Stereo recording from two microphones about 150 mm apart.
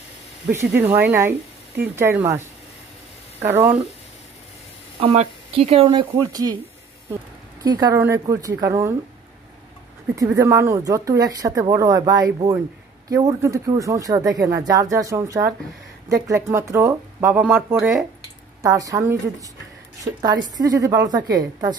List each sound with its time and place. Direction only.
0.5 s speech: 15° right (ahead or behind)
3.4 s speech: 10° right (ahead or behind)
5.0 s speech: 40° right (ahead or behind); by 6.6 s 25° right (ahead or behind)
7.6 s speech: 25° right (ahead or behind)
10.1 s speech: 20° right (ahead or behind)
18.6 s speech: 25° right (ahead or behind)